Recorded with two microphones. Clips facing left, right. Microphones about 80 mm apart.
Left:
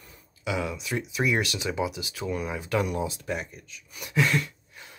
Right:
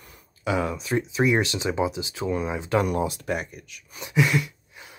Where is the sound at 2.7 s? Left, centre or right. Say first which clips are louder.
Right 4 dB; right.